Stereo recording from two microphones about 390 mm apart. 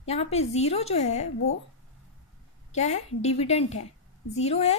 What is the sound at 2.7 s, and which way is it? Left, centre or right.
A woman's voice, centre.